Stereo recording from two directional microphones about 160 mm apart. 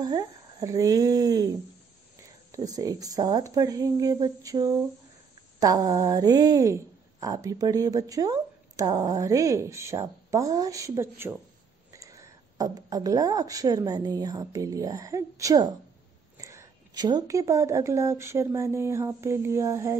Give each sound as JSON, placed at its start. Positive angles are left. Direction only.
{"t": 0.0, "sound": "a woman's voice", "side_deg": -25}
{"t": 2.5, "sound": "a woman's voice", "side_deg": -20}